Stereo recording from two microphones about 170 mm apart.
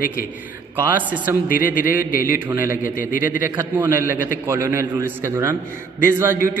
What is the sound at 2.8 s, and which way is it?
Speech, 55° left (ahead or behind).